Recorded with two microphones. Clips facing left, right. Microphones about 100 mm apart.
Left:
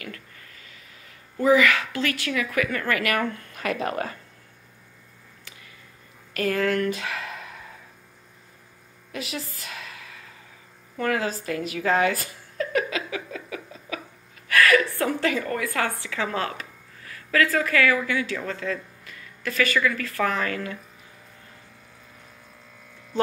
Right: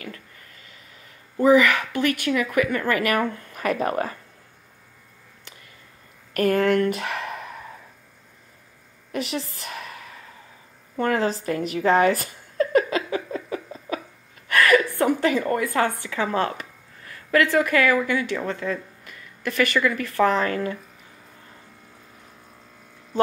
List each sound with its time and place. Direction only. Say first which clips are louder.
1.3 s speech: right 2 dB; 20° right (ahead or behind)
3.6 s a woman's voice: right 3 dB; 35° right (ahead or behind)
6.3 s speech: right 4 dB; 50° right (ahead or behind)
7.0 s a sound: right 3 dB; 45° right (ahead or behind)
9.7 s a sound: right 4 dB; 40° right (ahead or behind)
11.0 s a woman's voice: right 3 dB; 35° right (ahead or behind)
12.0 s a sound: right 4 dB; 40° right (ahead or behind)
14.5 s a sound: right 1 dB; 20° right (ahead or behind)
15.3 s a woman's voice: right 4 dB; 30° right (ahead or behind)
15.6 s speech: right 4 dB; 20° right (ahead or behind)
19.8 s speech: right 4 dB; 20° right (ahead or behind)
23.1 s speech: right 4 dB; 45° right (ahead or behind)